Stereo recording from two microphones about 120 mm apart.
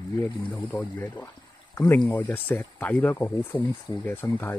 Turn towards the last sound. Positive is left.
turn(degrees=15)  # may be behind; listen again after turning